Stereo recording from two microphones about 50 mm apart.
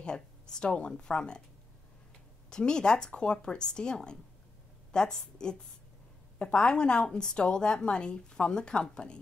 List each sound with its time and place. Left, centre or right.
0.0 s a woman's voice: centre
2.5 s a woman's voice: centre